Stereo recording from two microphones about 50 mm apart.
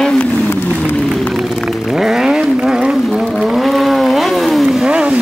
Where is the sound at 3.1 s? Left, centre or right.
Centre.